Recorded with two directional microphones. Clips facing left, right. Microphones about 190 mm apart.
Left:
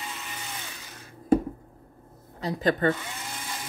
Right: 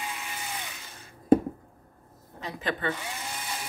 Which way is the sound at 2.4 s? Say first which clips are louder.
Left 7 dB; 35° left (ahead or behind).